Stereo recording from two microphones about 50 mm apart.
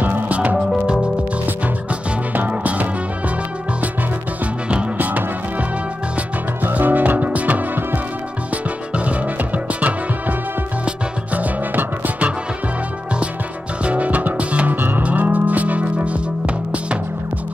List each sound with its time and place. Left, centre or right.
0.0 s music: right
2.3 s music: right
4.9 s music: right
6.6 s music: right
11.3 s music: right
13.8 s music: right
14.7 s music: right